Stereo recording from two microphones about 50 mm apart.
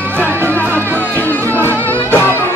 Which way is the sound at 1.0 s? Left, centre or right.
Left.